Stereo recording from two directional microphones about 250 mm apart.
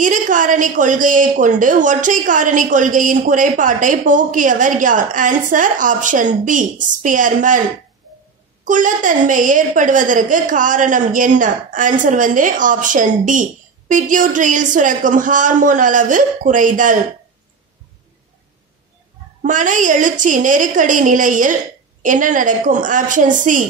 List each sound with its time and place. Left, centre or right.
0.0 s a woman's voice: right
8.6 s a woman's voice: right
19.4 s a woman's voice: right